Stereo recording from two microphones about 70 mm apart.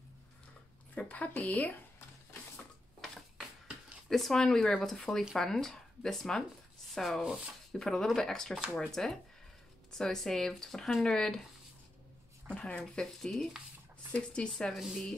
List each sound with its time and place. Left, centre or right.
0.9 s a woman's voice: left
3.0 s a sound: centre
4.1 s speech: centre
7.8 s speech: centre
12.4 s speech: centre
12.9 s speech: centre
14.1 s speech: centre
14.7 s speech: centre